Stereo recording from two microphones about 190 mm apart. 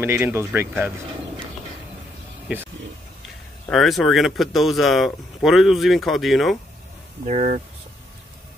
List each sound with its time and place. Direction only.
0.0 s speech: 10° right (ahead or behind)
2.4 s a sound: 10° right (ahead or behind)
3.6 s speech: centre (ahead or behind)
7.2 s speech: 40° right (ahead or behind)